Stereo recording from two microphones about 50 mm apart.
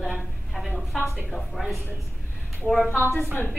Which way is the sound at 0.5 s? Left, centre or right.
Centre.